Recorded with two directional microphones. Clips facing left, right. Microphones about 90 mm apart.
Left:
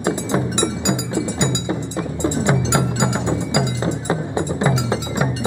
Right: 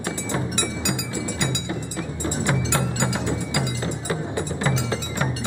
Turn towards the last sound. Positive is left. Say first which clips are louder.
# left 5 dB
turn(degrees=20)  # may be behind; listen again after turning